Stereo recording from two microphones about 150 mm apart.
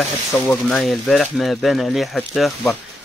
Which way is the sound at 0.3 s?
Centre (ahead or behind).